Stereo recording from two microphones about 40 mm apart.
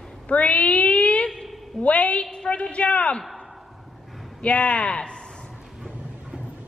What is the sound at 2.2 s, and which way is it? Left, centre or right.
Speech, centre.